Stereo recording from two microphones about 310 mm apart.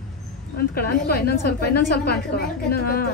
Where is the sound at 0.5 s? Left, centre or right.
Left.